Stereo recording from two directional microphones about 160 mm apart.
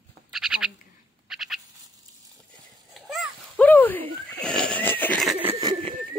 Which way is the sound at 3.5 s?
10° left (ahead or behind).